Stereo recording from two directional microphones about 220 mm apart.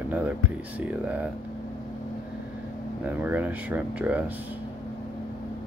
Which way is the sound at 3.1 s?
10° right (ahead or behind).